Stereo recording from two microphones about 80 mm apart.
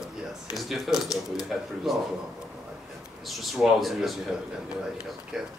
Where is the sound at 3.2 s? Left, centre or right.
Centre.